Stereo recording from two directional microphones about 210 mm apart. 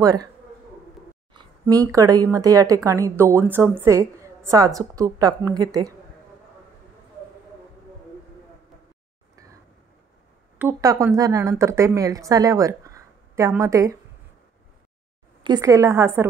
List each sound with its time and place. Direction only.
0.0 s a woman's voice: 15° right (ahead or behind)
1.3 s a sound: 20° right (ahead or behind)
1.9 s a woman's voice: 15° right (ahead or behind)
10.6 s a woman's voice: 15° right (ahead or behind)
15.4 s a woman's voice: 15° right (ahead or behind)